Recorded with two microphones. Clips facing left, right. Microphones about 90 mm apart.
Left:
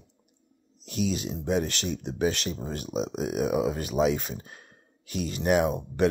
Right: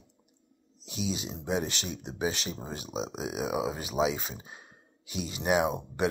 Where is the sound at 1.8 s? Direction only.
5° right (ahead or behind).